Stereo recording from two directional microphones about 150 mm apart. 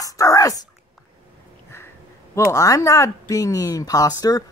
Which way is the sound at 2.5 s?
20° left (ahead or behind).